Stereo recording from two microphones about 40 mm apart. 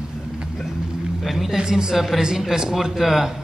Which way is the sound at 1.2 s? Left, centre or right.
Centre.